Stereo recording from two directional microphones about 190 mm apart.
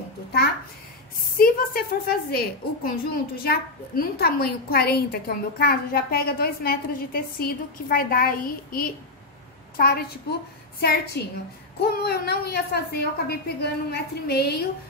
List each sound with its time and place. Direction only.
1.3 s a woman's voice: 50° left (ahead or behind)